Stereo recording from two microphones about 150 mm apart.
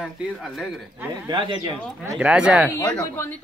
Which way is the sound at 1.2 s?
30° right (ahead or behind).